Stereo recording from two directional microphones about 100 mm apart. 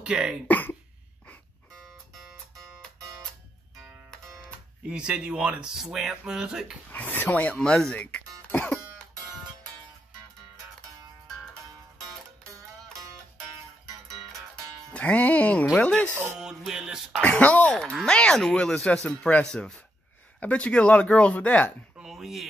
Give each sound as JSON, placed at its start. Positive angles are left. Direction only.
{"t": 0.0, "sound": "speech", "side_deg": -10}
{"t": 0.5, "sound": "cough", "side_deg": 15}
{"t": 4.8, "sound": "speech", "side_deg": -10}
{"t": 6.9, "sound": "speech", "side_deg": 20}
{"t": 14.5, "sound": "music", "side_deg": 10}
{"t": 15.7, "sound": "speech", "side_deg": 10}
{"t": 16.3, "sound": "throat clearing", "side_deg": -5}
{"t": 17.2, "sound": "speech", "side_deg": 15}
{"t": 21.9, "sound": "chopping", "side_deg": -5}